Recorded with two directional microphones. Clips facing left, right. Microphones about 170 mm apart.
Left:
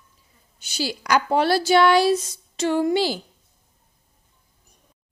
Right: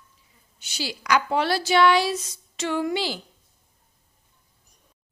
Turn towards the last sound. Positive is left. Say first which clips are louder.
# left 5 dB
turn(degrees=40)  # may be behind; listen again after turning